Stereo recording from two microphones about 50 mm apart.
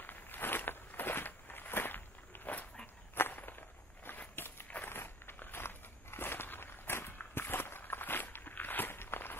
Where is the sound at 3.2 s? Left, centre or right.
Left.